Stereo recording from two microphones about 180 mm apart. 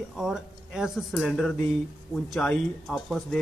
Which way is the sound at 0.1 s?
Centre (ahead or behind).